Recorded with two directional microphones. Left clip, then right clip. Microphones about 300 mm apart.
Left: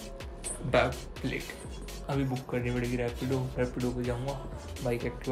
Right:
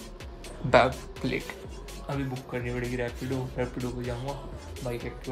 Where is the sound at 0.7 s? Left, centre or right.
Right.